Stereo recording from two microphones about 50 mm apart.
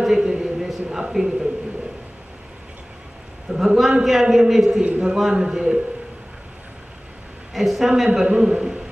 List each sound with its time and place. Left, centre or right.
0.0 s a sound: centre
1.1 s a man's voice: centre
3.4 s a man's voice: centre
7.5 s speech: centre
8.3 s a man's voice: centre